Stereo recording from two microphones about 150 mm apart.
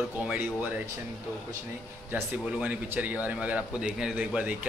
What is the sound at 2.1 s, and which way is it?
Speech, 10° right (ahead or behind).